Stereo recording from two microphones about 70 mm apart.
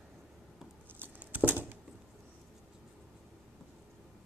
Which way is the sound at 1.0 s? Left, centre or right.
Right.